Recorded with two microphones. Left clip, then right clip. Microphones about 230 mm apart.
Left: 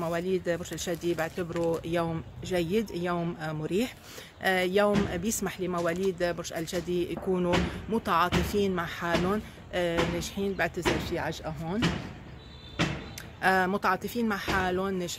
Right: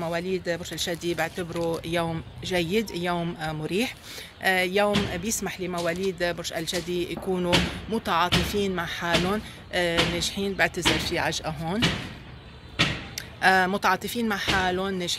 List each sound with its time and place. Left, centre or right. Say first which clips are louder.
0.0 s speech: right 1 dB; centre
4.4 s speech: right 2 dB; centre
12.8 s slam: right 6 dB; right
13.4 s speech: right 5 dB; centre